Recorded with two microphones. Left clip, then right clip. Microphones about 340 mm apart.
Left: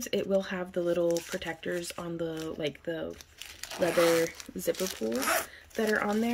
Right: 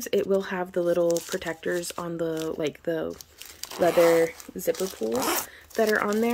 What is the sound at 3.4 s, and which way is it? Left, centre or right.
Crumpling, centre.